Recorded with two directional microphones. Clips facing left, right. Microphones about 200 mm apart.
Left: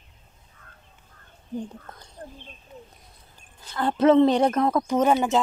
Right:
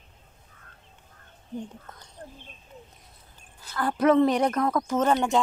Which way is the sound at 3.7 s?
25° left (ahead or behind).